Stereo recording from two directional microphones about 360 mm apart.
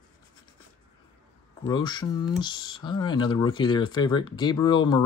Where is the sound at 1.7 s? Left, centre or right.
Centre.